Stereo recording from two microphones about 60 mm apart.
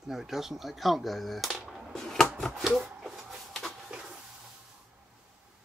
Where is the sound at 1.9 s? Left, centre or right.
Centre.